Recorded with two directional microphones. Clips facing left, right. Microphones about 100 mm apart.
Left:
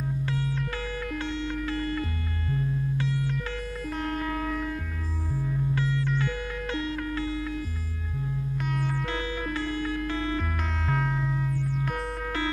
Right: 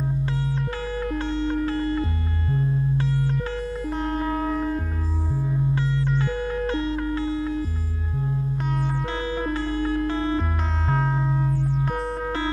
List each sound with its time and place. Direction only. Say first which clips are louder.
0.0 s music: right 3 dB; 30° right (ahead or behind)
5.3 s music: right 3 dB; 20° right (ahead or behind)